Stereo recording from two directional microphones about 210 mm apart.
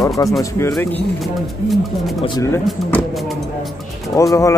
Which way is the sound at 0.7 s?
5° left (ahead or behind).